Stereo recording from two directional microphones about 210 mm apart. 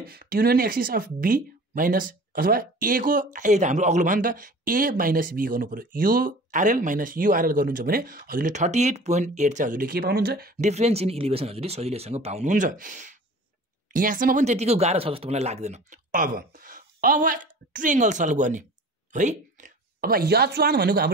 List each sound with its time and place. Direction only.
0.0 s speech: 45° right (ahead or behind)
10.6 s speech: 30° right (ahead or behind); by 21.1 s 50° right (ahead or behind)